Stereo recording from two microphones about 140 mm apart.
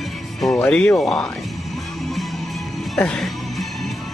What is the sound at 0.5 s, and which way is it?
Speech, 10° left (ahead or behind).